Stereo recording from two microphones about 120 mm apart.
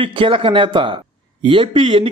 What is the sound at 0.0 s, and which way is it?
A man's voice, 45° right (ahead or behind).